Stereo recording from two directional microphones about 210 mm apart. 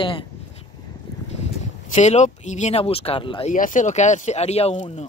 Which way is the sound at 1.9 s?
35° left (ahead or behind).